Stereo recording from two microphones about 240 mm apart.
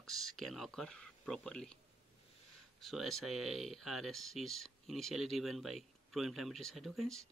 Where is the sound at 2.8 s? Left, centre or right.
Centre.